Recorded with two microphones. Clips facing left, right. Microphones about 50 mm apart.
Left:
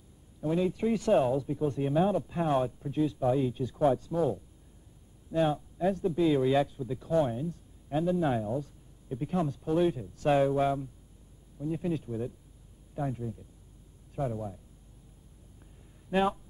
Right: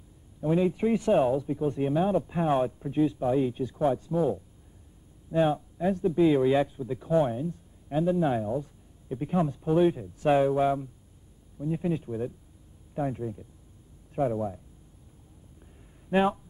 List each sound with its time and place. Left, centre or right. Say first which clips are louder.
0.4 s speech: right 4 dB; centre
3.7 s speech: left 1 dB; centre
5.3 s speech: right 3 dB; centre
16.1 s speech: right 3 dB; centre